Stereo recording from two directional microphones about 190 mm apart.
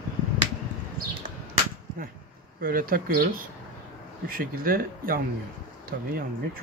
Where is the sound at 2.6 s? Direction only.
50° right (ahead or behind).